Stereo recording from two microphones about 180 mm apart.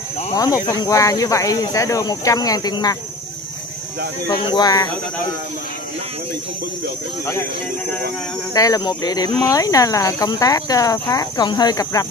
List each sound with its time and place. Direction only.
0.3 s speech: 20° left (ahead or behind)
4.5 s speech: 20° left (ahead or behind)
8.5 s speech: 20° left (ahead or behind)